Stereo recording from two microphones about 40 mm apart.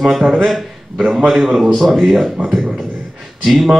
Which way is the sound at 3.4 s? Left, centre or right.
Centre.